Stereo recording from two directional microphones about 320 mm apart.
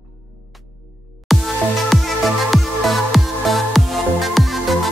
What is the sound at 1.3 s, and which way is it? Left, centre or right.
Music, centre.